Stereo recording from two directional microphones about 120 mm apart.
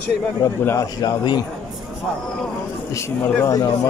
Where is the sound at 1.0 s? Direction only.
35° left (ahead or behind).